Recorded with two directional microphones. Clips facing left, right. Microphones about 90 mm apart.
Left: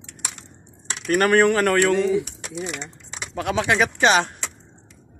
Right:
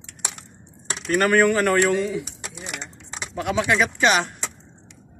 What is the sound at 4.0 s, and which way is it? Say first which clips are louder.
Speech: left 3 dB; 25° left (ahead or behind).